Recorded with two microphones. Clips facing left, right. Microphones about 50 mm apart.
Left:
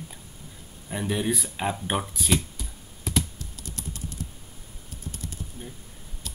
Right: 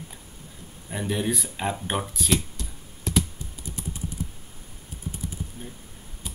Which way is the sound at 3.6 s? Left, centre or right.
Centre.